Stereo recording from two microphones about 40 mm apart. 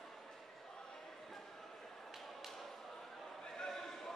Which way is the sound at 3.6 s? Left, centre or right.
Centre.